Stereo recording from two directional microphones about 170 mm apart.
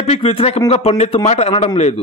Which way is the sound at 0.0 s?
35° left (ahead or behind).